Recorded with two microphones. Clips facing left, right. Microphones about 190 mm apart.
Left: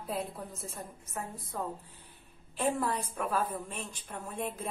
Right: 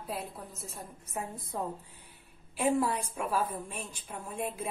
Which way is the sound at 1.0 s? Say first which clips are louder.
Right 5 dB; 15° right (ahead or behind).